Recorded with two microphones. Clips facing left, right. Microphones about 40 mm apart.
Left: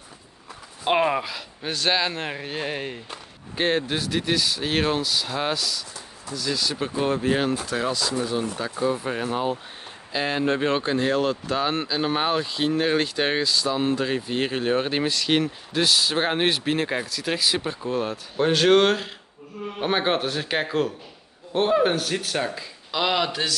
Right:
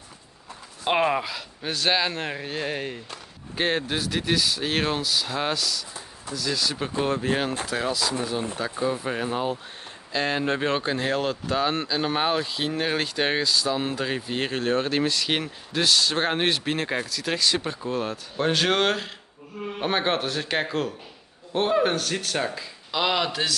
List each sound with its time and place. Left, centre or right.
0.8 s speech: centre
15.1 s speech: centre